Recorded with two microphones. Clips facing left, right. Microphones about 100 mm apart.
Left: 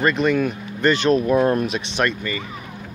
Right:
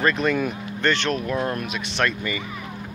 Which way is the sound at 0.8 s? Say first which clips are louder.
Left 5 dB; 10° left (ahead or behind).